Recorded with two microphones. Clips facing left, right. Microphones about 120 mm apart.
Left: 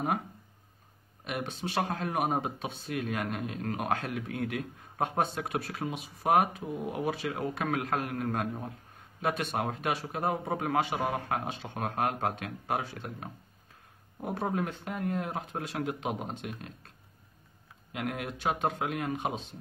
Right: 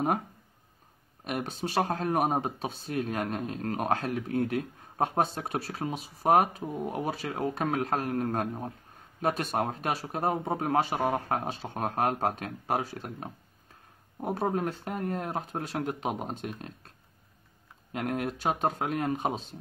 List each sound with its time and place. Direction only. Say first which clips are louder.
1.2 s speech: right 2 dB; 40° right (ahead or behind)
17.9 s speech: right 4 dB; 40° right (ahead or behind)